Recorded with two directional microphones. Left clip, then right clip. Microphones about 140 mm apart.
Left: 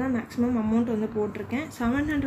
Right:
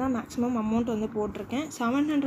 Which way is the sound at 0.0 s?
30° right (ahead or behind).